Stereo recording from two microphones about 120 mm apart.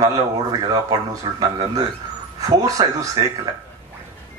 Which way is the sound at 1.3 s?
45° right (ahead or behind).